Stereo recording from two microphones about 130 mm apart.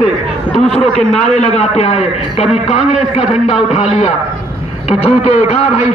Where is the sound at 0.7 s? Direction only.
55° left (ahead or behind).